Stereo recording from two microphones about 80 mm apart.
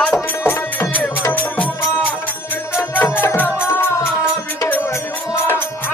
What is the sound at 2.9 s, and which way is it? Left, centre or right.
Music, left.